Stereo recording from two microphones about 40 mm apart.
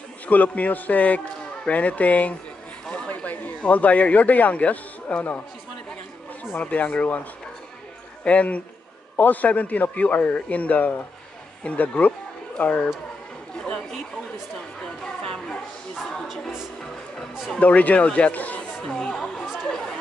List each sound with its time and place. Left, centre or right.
0.3 s a man's voice: left
6.6 s a man's voice: left
8.2 s a man's voice: left
13.6 s chatter: centre
15.0 s a sound: centre
17.6 s a man's voice: left
18.6 s chatter: left